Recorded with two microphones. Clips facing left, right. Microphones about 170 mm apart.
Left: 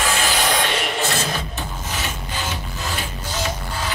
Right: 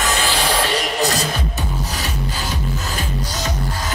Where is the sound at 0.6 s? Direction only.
40° right (ahead or behind).